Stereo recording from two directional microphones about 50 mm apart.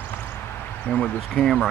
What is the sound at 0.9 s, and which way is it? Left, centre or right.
Speech, centre.